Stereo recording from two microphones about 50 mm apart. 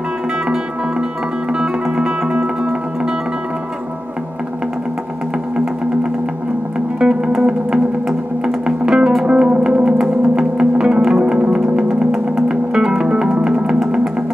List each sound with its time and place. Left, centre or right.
1.6 s music: centre
7.0 s music: centre